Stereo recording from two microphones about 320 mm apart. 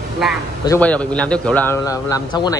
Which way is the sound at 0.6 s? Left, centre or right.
Centre.